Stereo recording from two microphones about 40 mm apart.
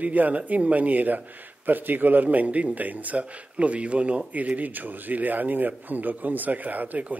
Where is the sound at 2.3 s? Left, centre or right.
Right.